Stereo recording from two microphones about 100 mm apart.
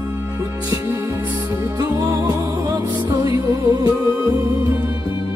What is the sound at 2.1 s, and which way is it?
Music, 40° right (ahead or behind).